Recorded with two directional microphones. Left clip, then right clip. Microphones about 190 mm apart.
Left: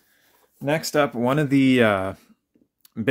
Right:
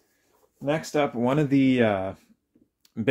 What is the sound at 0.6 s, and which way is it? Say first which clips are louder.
Speech: left 4 dB; 35° left (ahead or behind).